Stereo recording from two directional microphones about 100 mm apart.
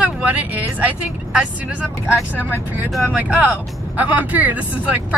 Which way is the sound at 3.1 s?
15° right (ahead or behind).